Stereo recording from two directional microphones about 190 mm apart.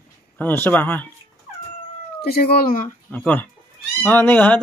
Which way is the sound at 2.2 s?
55° left (ahead or behind).